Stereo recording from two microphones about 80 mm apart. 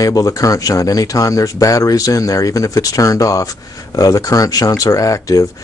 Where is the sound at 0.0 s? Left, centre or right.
Left.